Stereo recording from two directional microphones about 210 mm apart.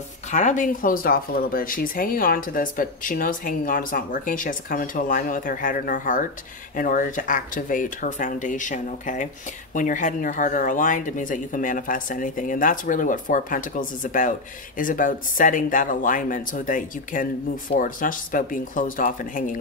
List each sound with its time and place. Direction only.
0.3 s speech: 35° left (ahead or behind)